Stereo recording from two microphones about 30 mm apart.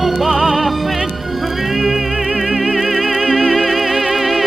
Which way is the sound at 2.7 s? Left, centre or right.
Centre.